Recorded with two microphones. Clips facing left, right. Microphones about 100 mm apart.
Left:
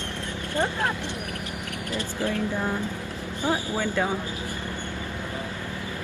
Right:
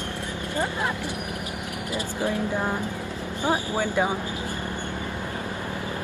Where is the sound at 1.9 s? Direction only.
15° right (ahead or behind).